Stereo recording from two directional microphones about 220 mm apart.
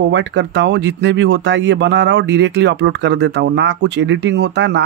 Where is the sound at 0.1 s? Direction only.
55° right (ahead or behind).